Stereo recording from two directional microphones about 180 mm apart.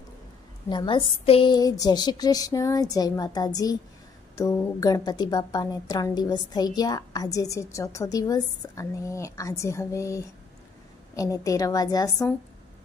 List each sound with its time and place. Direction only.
0.7 s a woman's voice: 25° left (ahead or behind)